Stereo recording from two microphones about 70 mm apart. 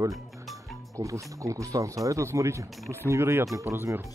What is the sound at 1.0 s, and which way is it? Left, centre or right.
Speech, right.